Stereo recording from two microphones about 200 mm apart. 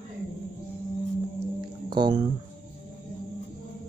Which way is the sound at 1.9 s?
20° right (ahead or behind).